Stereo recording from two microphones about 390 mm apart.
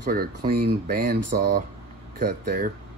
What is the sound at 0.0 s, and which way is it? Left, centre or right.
Speech, right.